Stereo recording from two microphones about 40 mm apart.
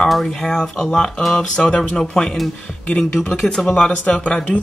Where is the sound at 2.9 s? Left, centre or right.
Left.